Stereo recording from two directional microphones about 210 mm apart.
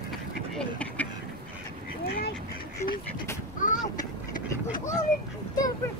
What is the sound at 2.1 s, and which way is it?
Duck, 50° left (ahead or behind).